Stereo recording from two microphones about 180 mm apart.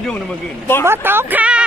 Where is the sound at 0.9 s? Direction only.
10° right (ahead or behind).